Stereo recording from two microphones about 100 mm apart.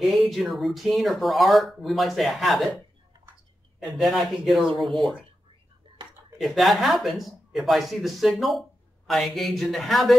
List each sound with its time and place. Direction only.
0.2 s speech: centre (ahead or behind)
3.8 s speech: centre (ahead or behind)
5.9 s a sound: 55° right (ahead or behind)
6.3 s speech: centre (ahead or behind)